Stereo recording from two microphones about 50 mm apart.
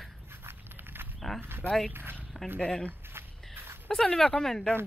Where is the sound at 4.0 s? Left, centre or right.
Centre.